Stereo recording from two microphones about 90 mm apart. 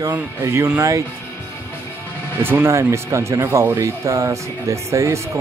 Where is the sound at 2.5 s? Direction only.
35° right (ahead or behind).